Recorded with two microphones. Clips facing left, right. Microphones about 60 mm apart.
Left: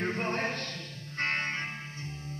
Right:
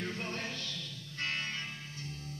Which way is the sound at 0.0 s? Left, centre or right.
Left.